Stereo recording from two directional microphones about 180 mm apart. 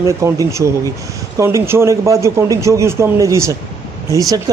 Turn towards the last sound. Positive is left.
turn(degrees=-20)  # may be behind; listen again after turning